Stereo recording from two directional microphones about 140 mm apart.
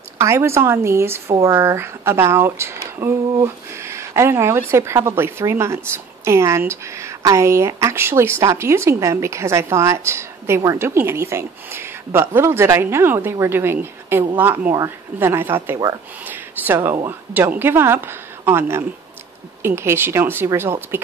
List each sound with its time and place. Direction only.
0.2 s a woman's voice: 20° right (ahead or behind)